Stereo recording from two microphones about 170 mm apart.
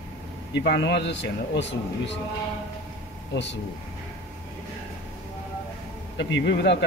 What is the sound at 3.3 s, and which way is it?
Speech, 90° left.